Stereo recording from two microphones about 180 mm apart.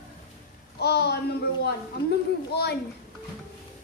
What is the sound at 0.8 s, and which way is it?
Speech, 65° left (ahead or behind).